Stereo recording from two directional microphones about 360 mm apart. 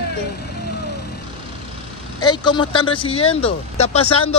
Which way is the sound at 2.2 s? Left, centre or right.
Centre.